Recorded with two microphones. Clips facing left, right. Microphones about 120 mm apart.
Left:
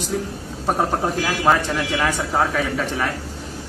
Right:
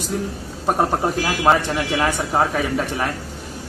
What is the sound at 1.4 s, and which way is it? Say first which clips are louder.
Speech: right 1 dB; 15° right (ahead or behind).